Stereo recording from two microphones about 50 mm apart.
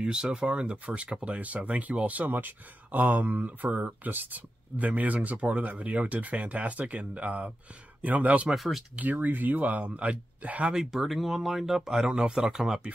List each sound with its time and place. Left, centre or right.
0.0 s speech: centre
8.5 s speech: centre
8.9 s speech: right
10.7 s speech: centre